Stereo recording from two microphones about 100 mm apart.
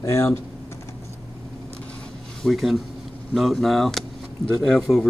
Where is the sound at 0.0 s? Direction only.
30° left (ahead or behind).